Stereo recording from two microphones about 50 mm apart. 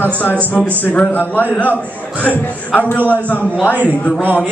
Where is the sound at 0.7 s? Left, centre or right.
Left.